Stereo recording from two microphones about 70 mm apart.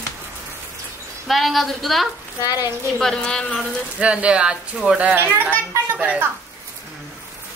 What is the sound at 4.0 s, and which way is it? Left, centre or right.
Speech, centre.